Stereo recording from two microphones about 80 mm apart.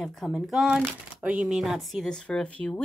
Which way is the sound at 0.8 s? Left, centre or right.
Right.